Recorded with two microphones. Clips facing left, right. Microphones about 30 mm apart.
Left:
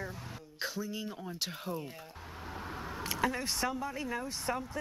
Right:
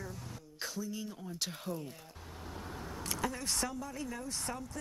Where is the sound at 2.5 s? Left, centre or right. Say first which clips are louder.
Left 3 dB; left.